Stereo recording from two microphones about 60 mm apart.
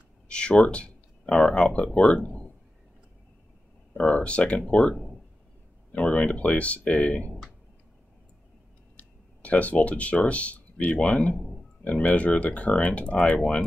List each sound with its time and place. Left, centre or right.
0.3 s speech: centre
4.0 s speech: centre
8.9 s a sound: left
11.0 s speech: left